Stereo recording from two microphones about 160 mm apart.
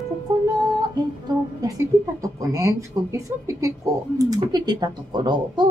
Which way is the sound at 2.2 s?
20° right (ahead or behind).